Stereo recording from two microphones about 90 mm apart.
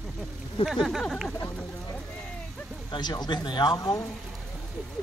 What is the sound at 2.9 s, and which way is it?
Speech, 55° left (ahead or behind).